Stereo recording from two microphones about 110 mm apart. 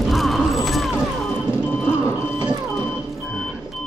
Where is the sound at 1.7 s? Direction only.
20° left (ahead or behind).